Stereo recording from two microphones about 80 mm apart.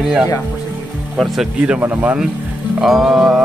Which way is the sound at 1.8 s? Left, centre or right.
Right.